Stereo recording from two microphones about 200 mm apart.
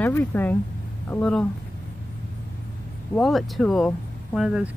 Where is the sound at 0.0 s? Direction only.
10° left (ahead or behind).